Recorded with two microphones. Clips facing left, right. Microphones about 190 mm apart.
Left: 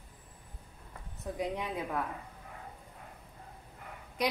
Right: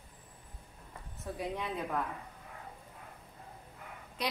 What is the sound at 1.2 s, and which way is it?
Speech, 15° left (ahead or behind).